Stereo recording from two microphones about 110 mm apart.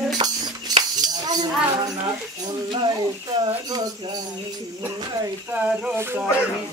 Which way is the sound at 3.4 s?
35° right (ahead or behind).